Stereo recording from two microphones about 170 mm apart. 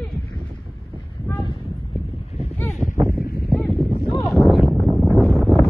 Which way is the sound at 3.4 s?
Centre (ahead or behind).